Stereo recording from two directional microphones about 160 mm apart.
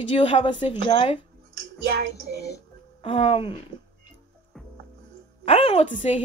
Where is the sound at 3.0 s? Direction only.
35° left (ahead or behind).